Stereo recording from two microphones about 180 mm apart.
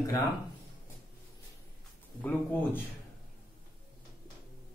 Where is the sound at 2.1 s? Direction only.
10° left (ahead or behind).